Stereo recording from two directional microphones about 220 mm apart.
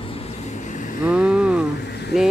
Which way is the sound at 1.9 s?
50° left (ahead or behind).